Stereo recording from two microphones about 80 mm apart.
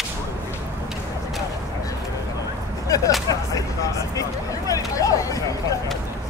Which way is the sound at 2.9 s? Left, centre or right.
Left.